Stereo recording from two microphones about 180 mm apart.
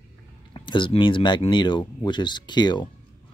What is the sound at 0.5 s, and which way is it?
Speech, 25° left (ahead or behind).